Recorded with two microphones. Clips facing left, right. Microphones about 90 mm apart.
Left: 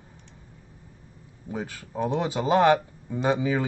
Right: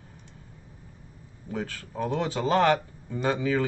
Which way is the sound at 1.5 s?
15° left (ahead or behind).